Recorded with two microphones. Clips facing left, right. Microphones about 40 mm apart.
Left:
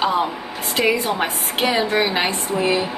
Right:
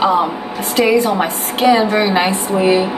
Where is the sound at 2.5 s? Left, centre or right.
Right.